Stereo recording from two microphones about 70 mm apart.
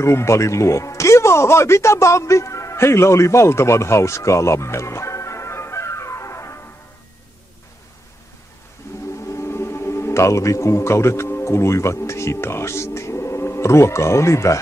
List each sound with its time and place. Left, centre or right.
0.0 s speech: left
8.8 s a sound: left
9.3 s speech: left